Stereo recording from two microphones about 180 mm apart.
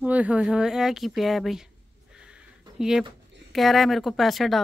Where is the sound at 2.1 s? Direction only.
5° right (ahead or behind).